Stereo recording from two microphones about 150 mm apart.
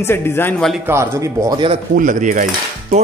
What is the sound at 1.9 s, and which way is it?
Speech, 60° right (ahead or behind).